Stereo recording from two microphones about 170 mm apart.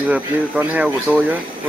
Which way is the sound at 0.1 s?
10° right (ahead or behind).